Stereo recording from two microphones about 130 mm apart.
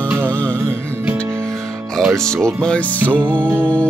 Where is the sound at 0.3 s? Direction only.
10° left (ahead or behind).